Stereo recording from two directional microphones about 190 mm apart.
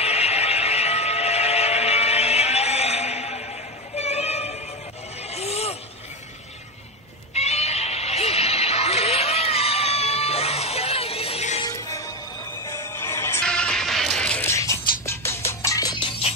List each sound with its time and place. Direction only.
0.0 s a sound: 35° left (ahead or behind)
5.2 s vehicle: 35° left (ahead or behind)
7.3 s music: 35° left (ahead or behind)
11.6 s music: 20° left (ahead or behind)